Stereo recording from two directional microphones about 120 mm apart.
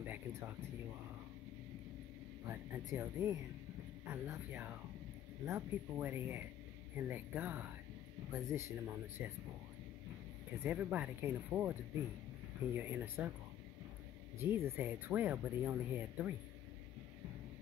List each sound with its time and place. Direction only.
0.0 s a sound: 15° right (ahead or behind)
2.4 s speech: 25° right (ahead or behind)
10.7 s speech: 10° right (ahead or behind)
12.7 s speech: 20° right (ahead or behind)
14.4 s speech: 20° right (ahead or behind)